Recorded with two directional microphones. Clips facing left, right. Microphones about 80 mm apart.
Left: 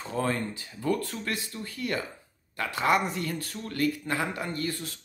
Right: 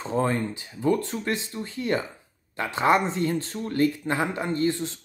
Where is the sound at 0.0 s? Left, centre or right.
Right.